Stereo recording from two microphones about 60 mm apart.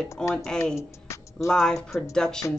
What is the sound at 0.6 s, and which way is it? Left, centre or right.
Speech, left.